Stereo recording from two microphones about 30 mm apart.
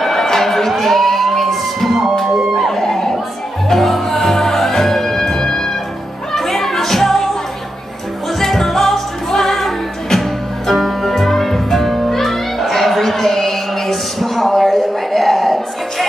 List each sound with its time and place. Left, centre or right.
0.0 s a sound: centre
3.6 s music: centre
8.4 s music: centre